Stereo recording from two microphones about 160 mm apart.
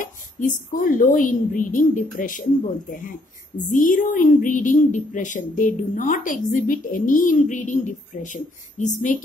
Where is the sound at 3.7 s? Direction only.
55° left (ahead or behind).